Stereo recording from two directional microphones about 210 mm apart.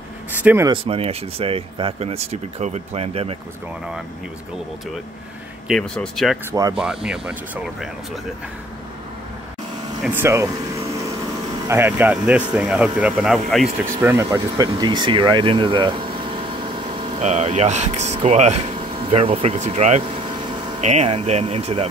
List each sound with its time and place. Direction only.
0.4 s speech: 10° right (ahead or behind)
0.7 s speech: 25° right (ahead or behind)
5.7 s speech: centre (ahead or behind)
6.5 s speech: 15° right (ahead or behind)
6.8 s speech: 5° right (ahead or behind)
10.0 s speech: 10° right (ahead or behind)
14.0 s speech: 15° right (ahead or behind)